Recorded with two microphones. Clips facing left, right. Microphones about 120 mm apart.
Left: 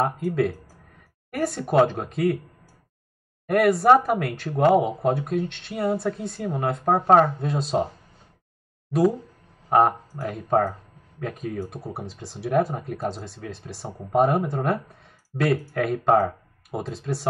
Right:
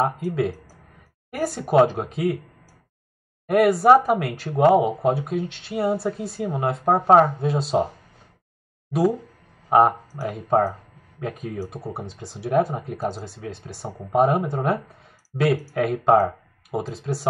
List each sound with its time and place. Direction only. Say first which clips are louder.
0.0 s speech: even; centre (ahead or behind)
3.4 s speech: right 2 dB; centre (ahead or behind)
9.7 s speech: right 2 dB; 5° right (ahead or behind)